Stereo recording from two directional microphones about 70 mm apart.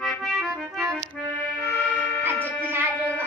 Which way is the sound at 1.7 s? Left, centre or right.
Centre.